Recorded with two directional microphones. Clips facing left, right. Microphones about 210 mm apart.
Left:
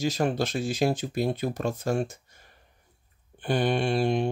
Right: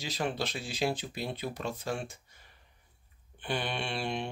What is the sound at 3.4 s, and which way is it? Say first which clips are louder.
Speech: left 9 dB; 45° left (ahead or behind).